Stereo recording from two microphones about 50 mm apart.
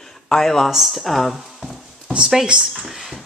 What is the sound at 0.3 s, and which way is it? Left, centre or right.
Speech, centre.